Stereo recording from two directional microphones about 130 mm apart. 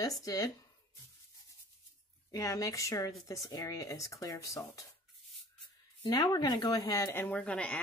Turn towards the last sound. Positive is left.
turn(degrees=10)  # may be behind; listen again after turning